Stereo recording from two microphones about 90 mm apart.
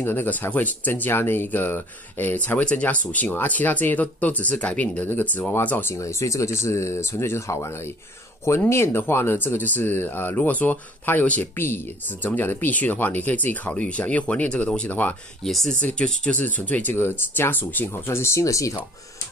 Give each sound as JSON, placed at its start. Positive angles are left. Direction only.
{"t": 0.0, "sound": "speech", "side_deg": 20}